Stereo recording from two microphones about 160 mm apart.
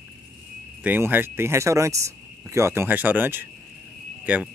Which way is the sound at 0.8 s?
10° right (ahead or behind).